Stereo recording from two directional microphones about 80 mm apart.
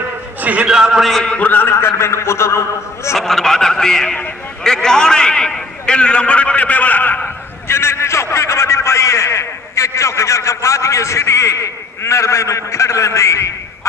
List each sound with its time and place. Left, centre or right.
0.4 s speech: centre
1.0 s a man's voice: centre
1.5 s a man's voice: left
3.2 s a man's voice: centre; by 13.5 s left